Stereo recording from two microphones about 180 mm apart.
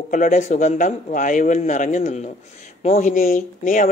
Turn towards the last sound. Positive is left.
turn(degrees=45)  # may be behind; listen again after turning